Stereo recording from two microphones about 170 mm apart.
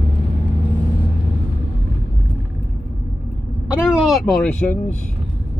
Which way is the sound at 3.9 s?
Centre (ahead or behind).